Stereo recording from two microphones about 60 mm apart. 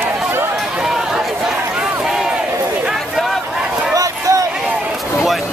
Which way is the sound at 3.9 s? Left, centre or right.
Right.